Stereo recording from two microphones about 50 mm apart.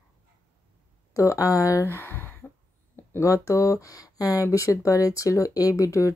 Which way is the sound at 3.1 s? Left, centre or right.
Left.